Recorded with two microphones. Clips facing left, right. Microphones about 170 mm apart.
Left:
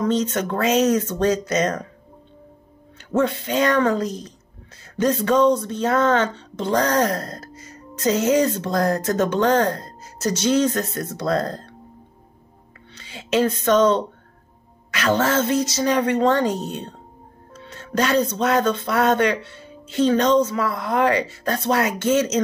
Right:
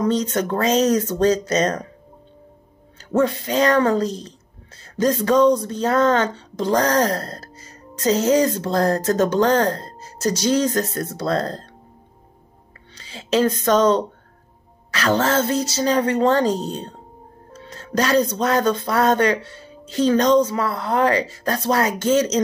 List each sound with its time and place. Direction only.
0.0 s speech: 35° right (ahead or behind)
3.0 s speech: 35° right (ahead or behind)
12.9 s speech: 35° right (ahead or behind)
17.5 s music: 35° right (ahead or behind)
18.4 s speech: 35° right (ahead or behind)